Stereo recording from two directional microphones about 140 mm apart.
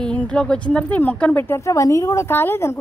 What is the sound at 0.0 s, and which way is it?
Speech, 5° left (ahead or behind).